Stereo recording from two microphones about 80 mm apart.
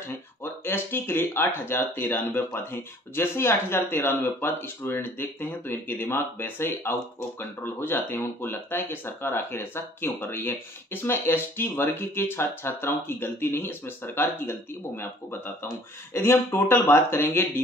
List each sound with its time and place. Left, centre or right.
0.1 s speech: left